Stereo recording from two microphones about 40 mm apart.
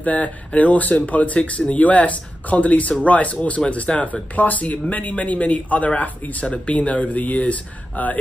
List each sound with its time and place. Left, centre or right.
0.0 s speech: left